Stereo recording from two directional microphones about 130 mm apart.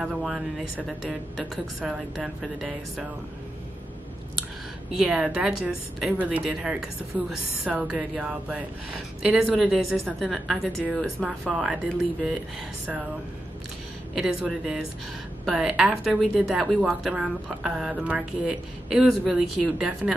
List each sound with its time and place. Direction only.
0.0 s a woman's voice: 5° right (ahead or behind)
4.9 s a woman's voice: 5° right (ahead or behind)
14.1 s a woman's voice: 5° right (ahead or behind)